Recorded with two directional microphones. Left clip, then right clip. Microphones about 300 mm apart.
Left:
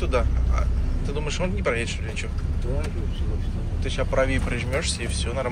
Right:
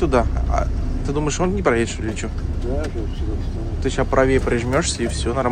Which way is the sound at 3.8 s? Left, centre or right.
Right.